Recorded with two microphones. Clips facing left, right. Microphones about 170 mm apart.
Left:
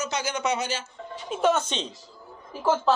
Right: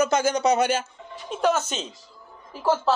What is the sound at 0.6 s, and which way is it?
Speech, 55° right (ahead or behind).